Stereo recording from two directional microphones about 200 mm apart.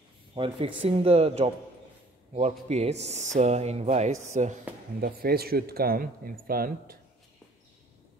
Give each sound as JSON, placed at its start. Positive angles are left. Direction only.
{"t": 0.3, "sound": "speech", "side_deg": -25}
{"t": 5.0, "sound": "a man's voice", "side_deg": -50}